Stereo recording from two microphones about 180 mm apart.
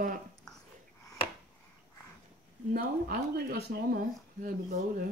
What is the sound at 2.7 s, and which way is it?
Speech, 50° right (ahead or behind).